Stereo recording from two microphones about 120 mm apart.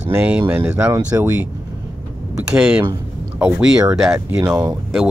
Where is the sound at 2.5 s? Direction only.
5° right (ahead or behind).